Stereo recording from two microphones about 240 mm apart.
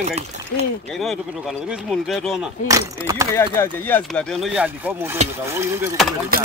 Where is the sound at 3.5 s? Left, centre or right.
Centre.